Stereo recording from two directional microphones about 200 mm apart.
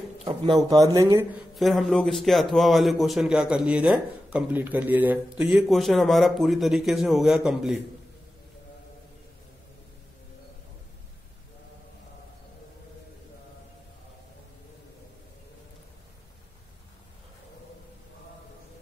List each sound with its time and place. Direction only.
0.2 s speech: 30° right (ahead or behind)
0.6 s speech: 15° right (ahead or behind)
1.5 s a man's voice: centre (ahead or behind)